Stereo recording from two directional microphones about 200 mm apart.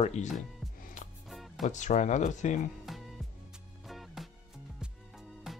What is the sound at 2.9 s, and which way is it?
Music, centre (ahead or behind).